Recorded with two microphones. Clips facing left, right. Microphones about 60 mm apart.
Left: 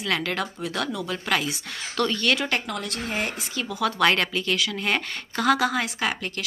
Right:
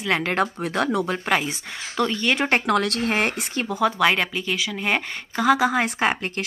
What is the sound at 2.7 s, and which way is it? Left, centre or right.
Speech, right.